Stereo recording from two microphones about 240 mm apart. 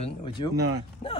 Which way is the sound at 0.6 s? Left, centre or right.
Right.